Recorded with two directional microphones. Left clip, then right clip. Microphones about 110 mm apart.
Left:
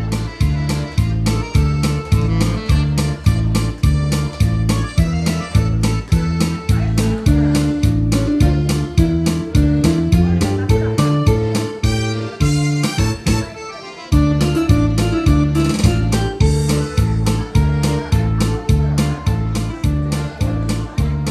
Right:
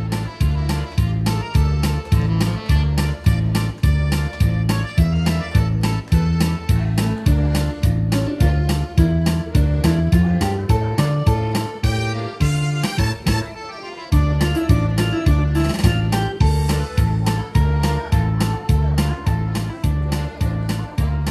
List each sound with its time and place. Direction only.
1.2 s music: 45° left (ahead or behind)